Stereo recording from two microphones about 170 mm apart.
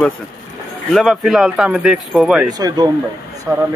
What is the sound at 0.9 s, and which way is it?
Speech, centre (ahead or behind).